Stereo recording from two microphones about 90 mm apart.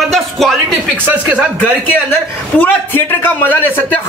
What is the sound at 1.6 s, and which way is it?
A man's voice, 20° left (ahead or behind).